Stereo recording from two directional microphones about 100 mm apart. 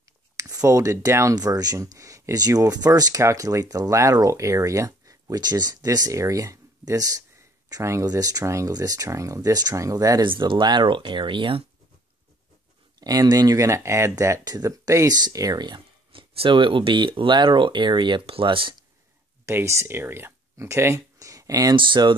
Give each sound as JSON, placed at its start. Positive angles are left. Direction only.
{"t": 0.4, "sound": "speech", "side_deg": -35}
{"t": 10.2, "sound": "speech", "side_deg": -55}
{"t": 13.0, "sound": "speech", "side_deg": -40}
{"t": 19.4, "sound": "speech", "side_deg": -30}
{"t": 21.7, "sound": "speech", "side_deg": -55}